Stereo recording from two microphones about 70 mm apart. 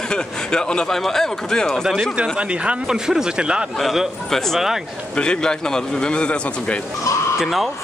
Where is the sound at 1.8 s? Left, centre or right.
Centre.